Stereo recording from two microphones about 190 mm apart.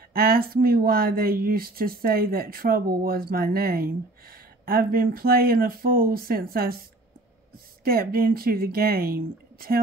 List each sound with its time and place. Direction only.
0.1 s speech: 50° right (ahead or behind)